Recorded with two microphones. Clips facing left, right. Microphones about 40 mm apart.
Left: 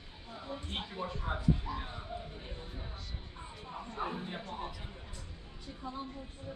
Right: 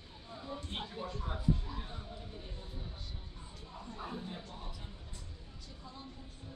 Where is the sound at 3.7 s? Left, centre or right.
Left.